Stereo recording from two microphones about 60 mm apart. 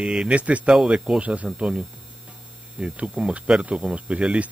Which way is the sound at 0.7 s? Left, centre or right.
Centre.